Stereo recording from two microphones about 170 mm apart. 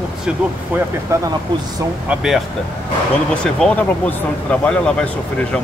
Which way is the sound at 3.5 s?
5° left (ahead or behind).